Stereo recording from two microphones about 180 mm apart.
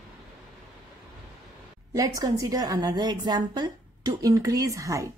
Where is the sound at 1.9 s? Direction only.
20° right (ahead or behind).